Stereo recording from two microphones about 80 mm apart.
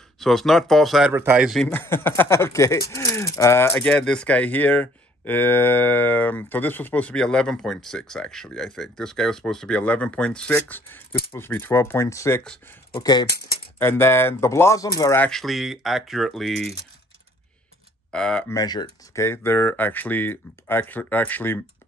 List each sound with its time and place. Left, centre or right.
0.2 s speech: centre
1.1 s speech: right
1.7 s speech: left
3.8 s speech: centre
11.3 s speech: left
13.0 s speech: left
13.7 s speech: left
15.4 s speech: centre
18.1 s speech: centre
18.5 s speech: left
19.1 s speech: left